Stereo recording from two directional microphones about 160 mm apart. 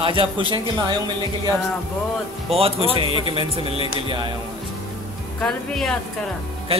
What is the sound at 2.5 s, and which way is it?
Speech, 35° right (ahead or behind).